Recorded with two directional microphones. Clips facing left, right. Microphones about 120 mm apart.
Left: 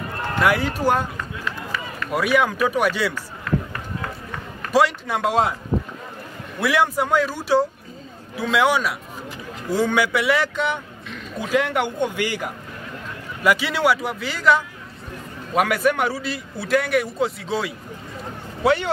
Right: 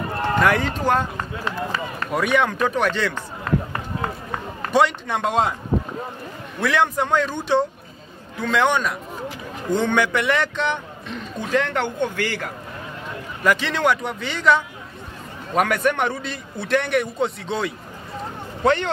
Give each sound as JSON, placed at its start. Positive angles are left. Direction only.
{"t": 0.4, "sound": "speech", "side_deg": 10}
{"t": 1.1, "sound": "speech", "side_deg": -35}
{"t": 2.0, "sound": "speech", "side_deg": 5}
{"t": 4.0, "sound": "run", "side_deg": -30}
{"t": 4.7, "sound": "a man's voice", "side_deg": 5}
{"t": 6.6, "sound": "a man's voice", "side_deg": 10}